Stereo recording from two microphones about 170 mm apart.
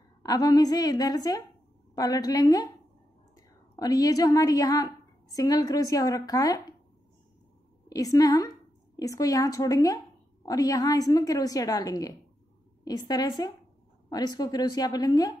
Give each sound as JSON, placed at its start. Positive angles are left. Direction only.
{"t": 0.2, "sound": "a woman's voice", "side_deg": 20}
{"t": 7.9, "sound": "a woman's voice", "side_deg": 20}